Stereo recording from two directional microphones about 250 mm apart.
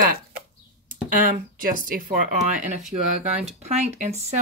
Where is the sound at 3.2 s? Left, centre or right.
Right.